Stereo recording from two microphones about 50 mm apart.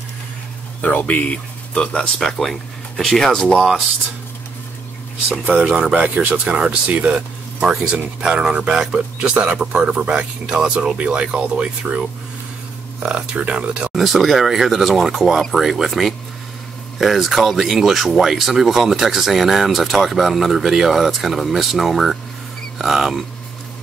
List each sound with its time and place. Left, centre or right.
0.7 s speech: left
2.1 s speech: centre
5.5 s speech: centre
7.6 s speech: centre
13.0 s speech: centre
13.9 s speech: centre